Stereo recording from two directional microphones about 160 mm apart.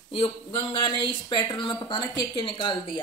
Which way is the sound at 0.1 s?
35° left (ahead or behind).